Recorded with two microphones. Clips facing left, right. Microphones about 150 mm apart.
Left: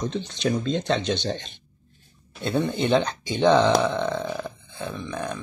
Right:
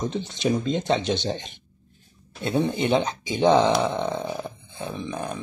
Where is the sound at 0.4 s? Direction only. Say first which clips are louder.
Right 1 dB; 10° right (ahead or behind).